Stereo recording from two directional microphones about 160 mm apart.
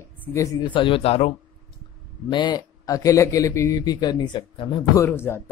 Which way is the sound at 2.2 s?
25° left (ahead or behind).